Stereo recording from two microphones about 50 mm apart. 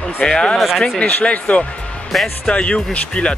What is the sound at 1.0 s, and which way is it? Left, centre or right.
Speech, left.